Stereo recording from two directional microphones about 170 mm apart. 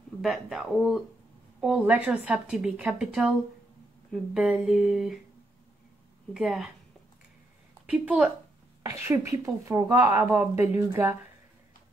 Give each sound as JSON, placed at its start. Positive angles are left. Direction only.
{"t": 0.2, "sound": "a woman's voice", "side_deg": 0}
{"t": 6.3, "sound": "a woman's voice", "side_deg": 0}
{"t": 7.8, "sound": "a woman's voice", "side_deg": -10}